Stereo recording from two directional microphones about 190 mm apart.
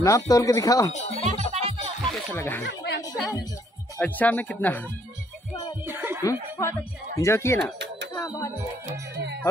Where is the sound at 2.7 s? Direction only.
65° left (ahead or behind).